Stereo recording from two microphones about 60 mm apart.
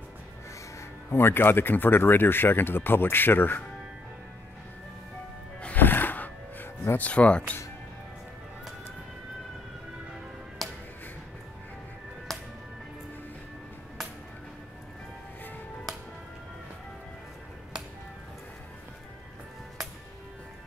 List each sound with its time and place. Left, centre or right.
1.1 s speech: left
5.8 s music: left
7.0 s speech: left
10.6 s music: centre
12.3 s music: centre